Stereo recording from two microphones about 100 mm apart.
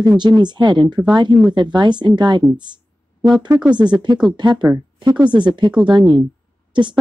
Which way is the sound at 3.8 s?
50° right (ahead or behind).